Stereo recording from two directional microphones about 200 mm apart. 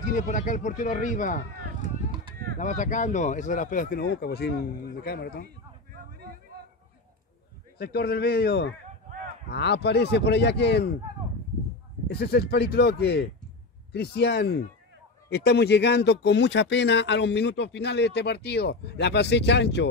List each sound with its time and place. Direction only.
0.1 s a man's voice: 40° left (ahead or behind)
2.6 s speech: 40° left (ahead or behind)
7.8 s speech: 50° left (ahead or behind)
12.1 s speech: 55° left (ahead or behind)